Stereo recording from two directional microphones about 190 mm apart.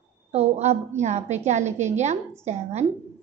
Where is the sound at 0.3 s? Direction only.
35° right (ahead or behind).